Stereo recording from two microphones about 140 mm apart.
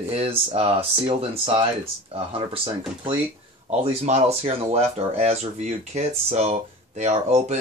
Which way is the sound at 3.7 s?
50° right (ahead or behind).